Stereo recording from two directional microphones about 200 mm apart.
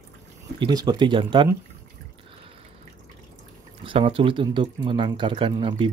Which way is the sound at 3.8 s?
25° right (ahead or behind).